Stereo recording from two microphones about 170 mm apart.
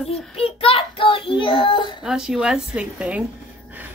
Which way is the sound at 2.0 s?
5° right (ahead or behind).